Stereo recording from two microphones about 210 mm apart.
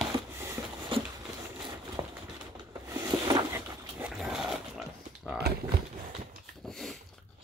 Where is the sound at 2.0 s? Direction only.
15° right (ahead or behind).